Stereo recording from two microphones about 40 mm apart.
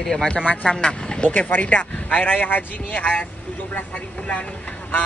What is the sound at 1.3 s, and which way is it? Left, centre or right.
Speech, left.